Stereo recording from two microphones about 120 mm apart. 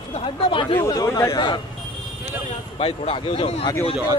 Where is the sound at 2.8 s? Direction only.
50° left (ahead or behind).